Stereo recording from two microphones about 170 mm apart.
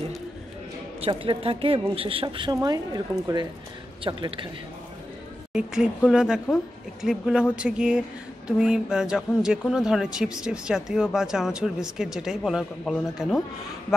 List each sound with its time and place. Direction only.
1.0 s a woman's voice: 35° right (ahead or behind)
5.5 s speech: 5° right (ahead or behind)